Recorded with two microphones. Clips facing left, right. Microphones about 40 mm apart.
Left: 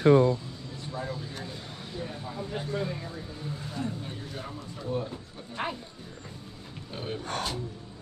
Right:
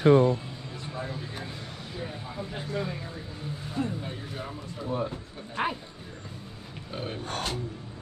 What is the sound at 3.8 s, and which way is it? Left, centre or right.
Speech, right.